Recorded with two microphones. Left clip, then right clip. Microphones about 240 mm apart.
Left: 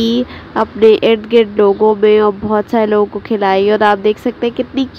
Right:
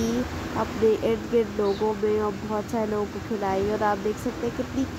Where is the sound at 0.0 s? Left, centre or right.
Left.